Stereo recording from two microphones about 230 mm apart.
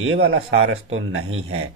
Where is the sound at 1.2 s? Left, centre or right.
Right.